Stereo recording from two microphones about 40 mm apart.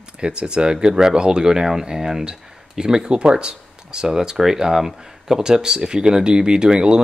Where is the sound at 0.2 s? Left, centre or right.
Right.